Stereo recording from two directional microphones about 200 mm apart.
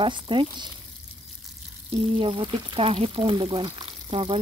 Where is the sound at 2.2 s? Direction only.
25° right (ahead or behind).